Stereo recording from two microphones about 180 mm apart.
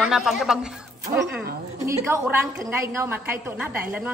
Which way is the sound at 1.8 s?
15° right (ahead or behind).